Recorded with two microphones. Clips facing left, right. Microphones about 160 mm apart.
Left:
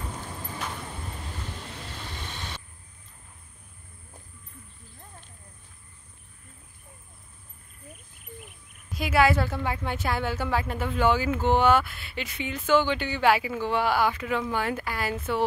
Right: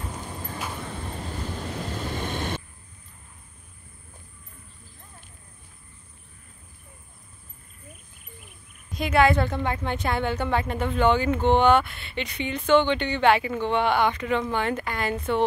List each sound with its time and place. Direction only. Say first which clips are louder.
0.1 s vehicle: right 2 dB; 5° right (ahead or behind)
1.7 s vehicle: right 9 dB; 45° right (ahead or behind)
8.9 s a woman's voice: right 2 dB; 5° left (ahead or behind)